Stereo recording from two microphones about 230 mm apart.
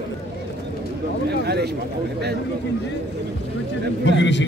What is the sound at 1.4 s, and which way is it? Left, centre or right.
Speech, right.